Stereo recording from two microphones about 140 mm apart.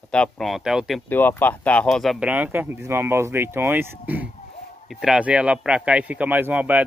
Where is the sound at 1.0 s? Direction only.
15° left (ahead or behind).